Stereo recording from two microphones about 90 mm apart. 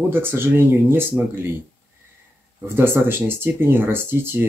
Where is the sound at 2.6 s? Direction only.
25° right (ahead or behind).